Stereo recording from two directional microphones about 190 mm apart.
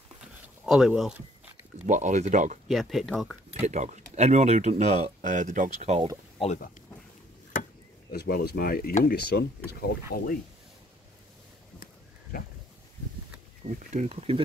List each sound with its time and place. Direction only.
0.7 s speech: centre (ahead or behind)
1.9 s speech: 40° right (ahead or behind)
2.7 s speech: centre (ahead or behind)
3.6 s speech: 40° right (ahead or behind)
6.4 s speech: 40° left (ahead or behind)
8.1 s speech: 55° left (ahead or behind)
11.8 s a sound: 50° left (ahead or behind)
13.7 s speech: 35° right (ahead or behind)